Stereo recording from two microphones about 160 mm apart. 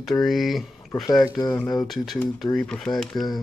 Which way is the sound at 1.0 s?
25° left (ahead or behind).